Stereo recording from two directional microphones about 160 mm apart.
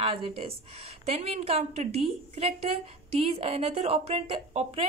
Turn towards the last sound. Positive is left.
turn(degrees=-40)  # may be behind; listen again after turning